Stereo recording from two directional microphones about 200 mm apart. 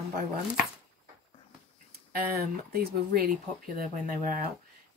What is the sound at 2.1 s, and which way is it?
Speech, 50° right (ahead or behind).